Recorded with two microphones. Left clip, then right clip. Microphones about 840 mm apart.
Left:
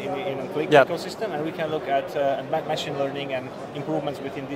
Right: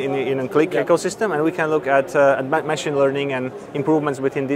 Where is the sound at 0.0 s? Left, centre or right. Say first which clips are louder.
Right 7 dB; right.